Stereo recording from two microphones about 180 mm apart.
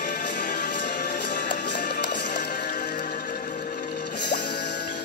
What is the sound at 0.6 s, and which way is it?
Music, 70° left (ahead or behind).